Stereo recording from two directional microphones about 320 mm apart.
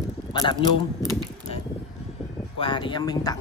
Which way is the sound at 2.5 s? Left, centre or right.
Centre.